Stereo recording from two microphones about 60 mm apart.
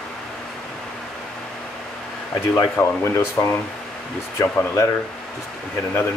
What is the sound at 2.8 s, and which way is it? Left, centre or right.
Speech, left.